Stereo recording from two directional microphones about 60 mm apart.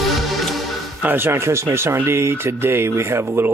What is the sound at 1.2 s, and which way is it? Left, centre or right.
Speech, right.